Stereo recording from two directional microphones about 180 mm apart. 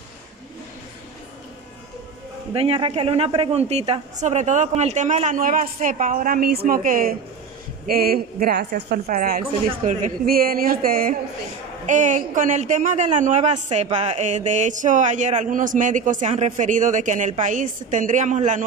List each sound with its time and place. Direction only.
2.5 s a man's voice: 30° right (ahead or behind)